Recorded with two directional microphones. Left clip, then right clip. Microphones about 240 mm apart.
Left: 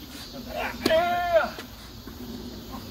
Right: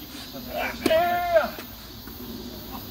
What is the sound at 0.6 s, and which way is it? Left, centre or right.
Child singing, left.